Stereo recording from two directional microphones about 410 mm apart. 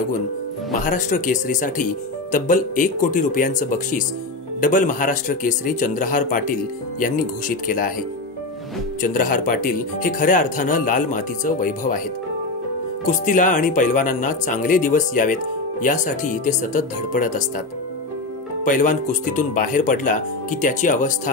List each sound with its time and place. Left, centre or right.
0.7 s speech: centre
9.0 s speech: centre
13.0 s speech: centre
18.6 s speech: centre